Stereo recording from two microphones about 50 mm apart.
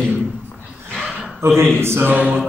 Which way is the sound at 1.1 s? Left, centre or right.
Centre.